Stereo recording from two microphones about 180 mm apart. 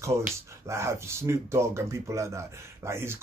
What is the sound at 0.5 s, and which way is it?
Speech, 15° right (ahead or behind).